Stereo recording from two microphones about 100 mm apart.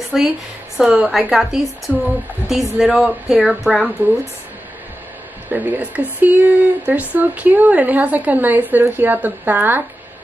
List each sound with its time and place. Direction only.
0.1 s speech: 5° right (ahead or behind)
5.5 s speech: 15° right (ahead or behind)